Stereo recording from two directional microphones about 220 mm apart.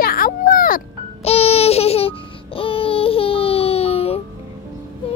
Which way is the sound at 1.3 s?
25° left (ahead or behind).